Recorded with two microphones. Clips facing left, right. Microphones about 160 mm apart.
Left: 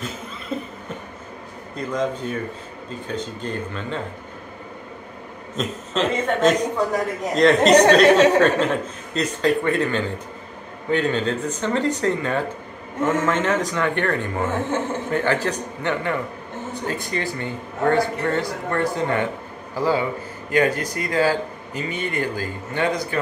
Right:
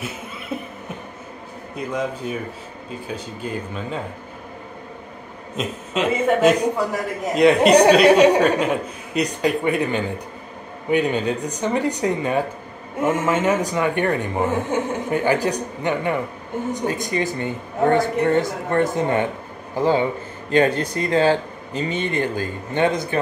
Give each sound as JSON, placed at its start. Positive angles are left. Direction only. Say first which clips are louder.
{"t": 0.5, "sound": "a sound", "louder": "left 1 dB", "side_deg": -10}
{"t": 1.8, "sound": "speech", "louder": "left 1 dB", "side_deg": -10}
{"t": 5.6, "sound": "speech", "louder": "even", "side_deg": -10}